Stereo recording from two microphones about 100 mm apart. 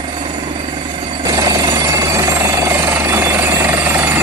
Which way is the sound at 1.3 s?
40° right (ahead or behind).